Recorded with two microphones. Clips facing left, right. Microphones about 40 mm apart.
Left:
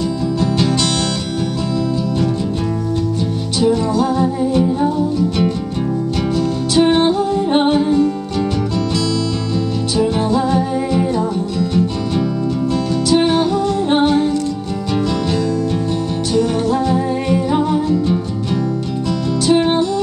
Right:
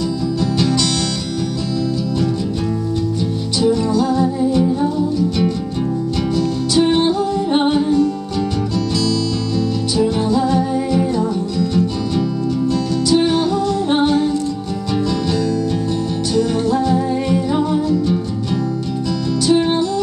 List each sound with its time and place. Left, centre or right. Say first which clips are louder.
0.4 s music: left 1 dB; left
3.5 s music: left 1 dB; centre
6.3 s music: left 1 dB; left
9.9 s music: left 1 dB; left
13.1 s music: left 1 dB; left
16.3 s music: left 1 dB; centre
16.8 s music: even; left
19.4 s music: left 1 dB; centre